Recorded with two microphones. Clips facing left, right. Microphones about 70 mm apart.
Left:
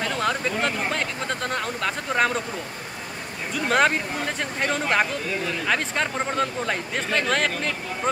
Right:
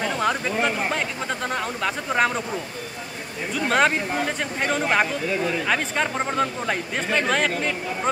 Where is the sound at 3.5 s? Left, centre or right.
Centre.